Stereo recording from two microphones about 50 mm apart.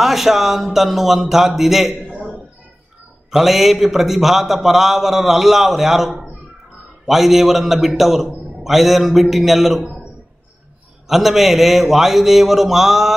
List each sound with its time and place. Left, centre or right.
0.0 s a man's voice: centre
2.0 s a sound: right
3.3 s a man's voice: centre
11.1 s a man's voice: centre